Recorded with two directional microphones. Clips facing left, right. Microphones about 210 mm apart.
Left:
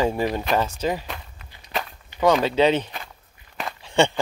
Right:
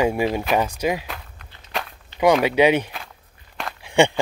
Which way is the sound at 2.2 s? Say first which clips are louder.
Right 2 dB; 10° right (ahead or behind).